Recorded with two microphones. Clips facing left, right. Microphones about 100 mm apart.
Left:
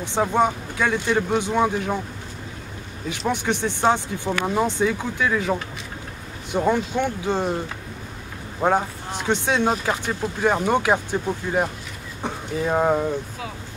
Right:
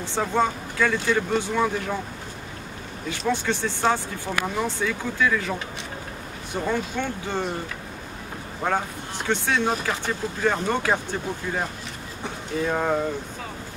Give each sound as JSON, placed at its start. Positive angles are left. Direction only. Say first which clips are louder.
{"t": 0.0, "sound": "speech", "louder": "left 3 dB", "side_deg": 15}
{"t": 3.1, "sound": "speech", "louder": "left 1 dB", "side_deg": 15}
{"t": 8.6, "sound": "speech", "louder": "left 5 dB", "side_deg": 20}
{"t": 12.6, "sound": "speech", "louder": "left 4 dB", "side_deg": 15}